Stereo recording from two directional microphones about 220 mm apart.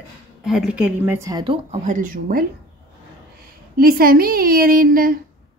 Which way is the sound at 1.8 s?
35° right (ahead or behind).